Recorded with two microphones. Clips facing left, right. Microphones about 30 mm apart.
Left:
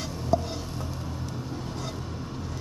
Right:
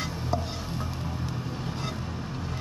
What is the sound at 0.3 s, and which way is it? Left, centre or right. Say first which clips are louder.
Music: left 5 dB; centre.